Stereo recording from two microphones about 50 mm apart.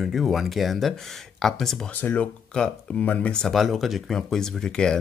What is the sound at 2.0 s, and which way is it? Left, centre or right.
Speech, left.